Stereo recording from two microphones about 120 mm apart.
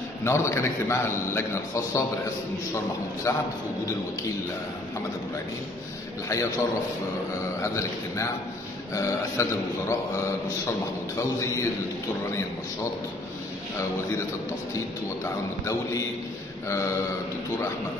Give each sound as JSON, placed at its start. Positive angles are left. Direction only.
{"t": 0.2, "sound": "a man's voice", "side_deg": 25}
{"t": 3.3, "sound": "a man's voice", "side_deg": 25}
{"t": 6.2, "sound": "a man's voice", "side_deg": 25}
{"t": 7.6, "sound": "a man's voice", "side_deg": 25}
{"t": 16.6, "sound": "a man's voice", "side_deg": 25}